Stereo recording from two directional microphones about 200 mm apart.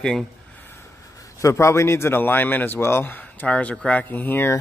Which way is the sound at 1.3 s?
15° left (ahead or behind).